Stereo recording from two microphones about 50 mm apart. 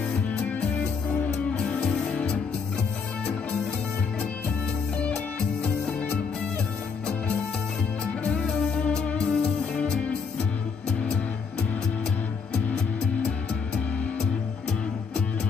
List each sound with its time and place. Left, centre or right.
0.1 s music: left
1.8 s music: centre
4.9 s music: left
8.4 s music: centre
10.9 s music: left